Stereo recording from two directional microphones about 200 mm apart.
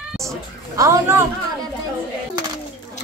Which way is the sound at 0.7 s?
15° right (ahead or behind).